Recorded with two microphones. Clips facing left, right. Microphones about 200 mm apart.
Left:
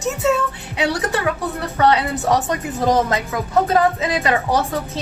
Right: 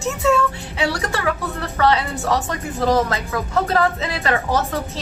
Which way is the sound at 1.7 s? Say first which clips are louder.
Left 2 dB; 20° left (ahead or behind).